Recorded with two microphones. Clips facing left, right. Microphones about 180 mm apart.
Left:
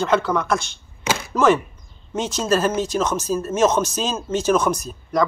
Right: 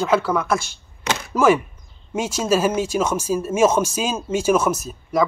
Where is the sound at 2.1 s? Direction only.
10° right (ahead or behind).